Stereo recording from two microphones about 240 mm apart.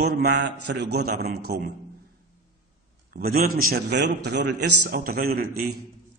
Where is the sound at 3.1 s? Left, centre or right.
Right.